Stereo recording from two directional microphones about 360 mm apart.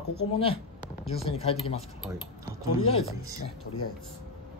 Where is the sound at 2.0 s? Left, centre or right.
Centre.